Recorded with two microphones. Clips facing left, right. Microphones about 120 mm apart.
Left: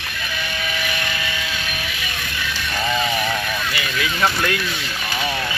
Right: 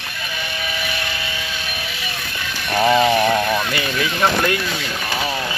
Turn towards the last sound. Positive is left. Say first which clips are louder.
# right 2 dB
turn(degrees=-35)  # may be behind; listen again after turning